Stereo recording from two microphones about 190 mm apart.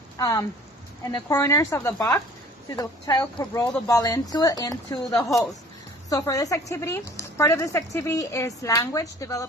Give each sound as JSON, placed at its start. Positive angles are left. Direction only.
{"t": 0.2, "sound": "speech", "side_deg": 20}
{"t": 5.1, "sound": "a woman's voice", "side_deg": 5}
{"t": 6.0, "sound": "speech", "side_deg": 20}